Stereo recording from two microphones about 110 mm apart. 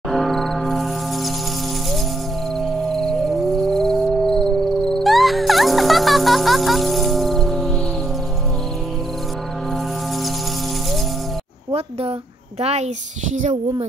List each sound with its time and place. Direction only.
0.1 s a sound: centre (ahead or behind)
3.0 s music: centre (ahead or behind)
12.5 s a child's voice: 85° right